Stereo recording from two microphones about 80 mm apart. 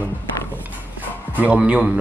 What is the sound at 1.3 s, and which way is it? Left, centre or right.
Speech, centre.